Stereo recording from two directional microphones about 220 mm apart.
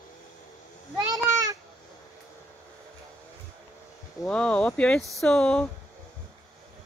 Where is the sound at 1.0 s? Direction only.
15° right (ahead or behind).